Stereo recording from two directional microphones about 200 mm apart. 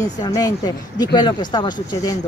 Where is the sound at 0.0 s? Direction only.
20° left (ahead or behind).